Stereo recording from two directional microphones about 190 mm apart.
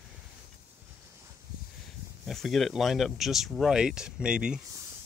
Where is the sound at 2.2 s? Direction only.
Centre (ahead or behind).